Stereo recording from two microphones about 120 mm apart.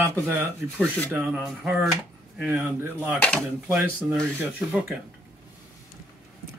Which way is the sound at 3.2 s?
10° left (ahead or behind).